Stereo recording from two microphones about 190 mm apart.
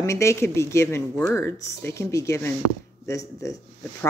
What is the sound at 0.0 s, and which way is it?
Speech, 15° left (ahead or behind).